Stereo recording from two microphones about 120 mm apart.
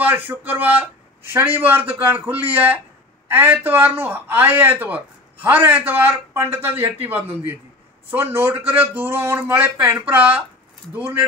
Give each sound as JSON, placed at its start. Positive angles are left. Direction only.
{"t": 0.0, "sound": "speech", "side_deg": -15}